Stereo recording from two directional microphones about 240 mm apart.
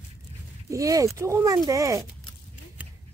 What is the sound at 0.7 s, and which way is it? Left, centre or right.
Speech, centre.